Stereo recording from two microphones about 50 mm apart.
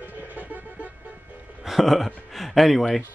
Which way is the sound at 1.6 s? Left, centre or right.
Centre.